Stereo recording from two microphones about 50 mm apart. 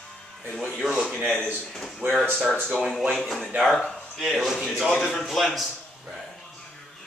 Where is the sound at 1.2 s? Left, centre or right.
Right.